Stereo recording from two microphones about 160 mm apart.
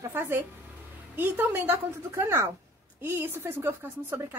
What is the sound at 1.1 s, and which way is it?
A woman's voice, 10° right (ahead or behind).